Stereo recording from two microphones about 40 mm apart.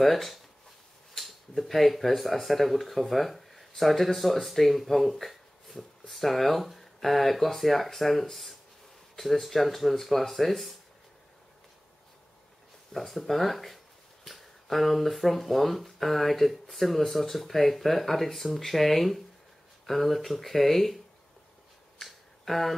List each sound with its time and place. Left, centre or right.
0.0 s speech: centre
12.9 s speech: centre
22.0 s a sound: centre